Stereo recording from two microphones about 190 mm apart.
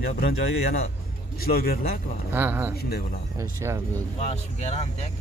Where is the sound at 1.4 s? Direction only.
55° left (ahead or behind).